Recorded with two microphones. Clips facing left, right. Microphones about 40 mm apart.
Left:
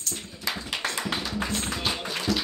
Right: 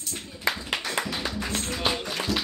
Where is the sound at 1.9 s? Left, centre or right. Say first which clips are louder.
Even; centre.